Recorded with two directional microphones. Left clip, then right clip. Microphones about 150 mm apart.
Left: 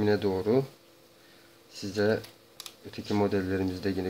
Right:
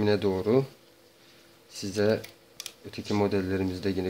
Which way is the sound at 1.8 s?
15° right (ahead or behind).